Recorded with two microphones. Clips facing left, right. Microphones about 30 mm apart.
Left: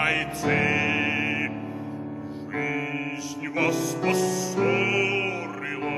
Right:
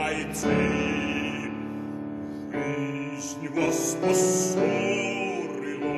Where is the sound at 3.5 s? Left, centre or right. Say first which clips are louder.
Left 1 dB; left.